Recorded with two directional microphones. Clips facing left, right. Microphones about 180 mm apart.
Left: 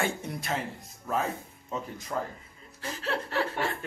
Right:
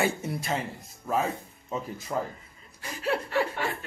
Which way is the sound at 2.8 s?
10° right (ahead or behind).